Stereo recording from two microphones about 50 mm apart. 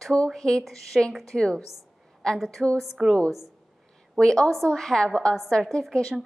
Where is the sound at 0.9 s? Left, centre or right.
Centre.